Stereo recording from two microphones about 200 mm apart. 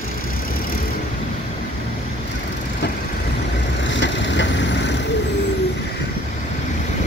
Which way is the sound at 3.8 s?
65° left (ahead or behind).